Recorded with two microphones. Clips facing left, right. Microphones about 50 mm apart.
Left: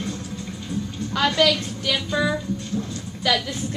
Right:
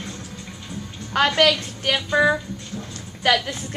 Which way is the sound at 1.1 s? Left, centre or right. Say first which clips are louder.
Right 2 dB; right.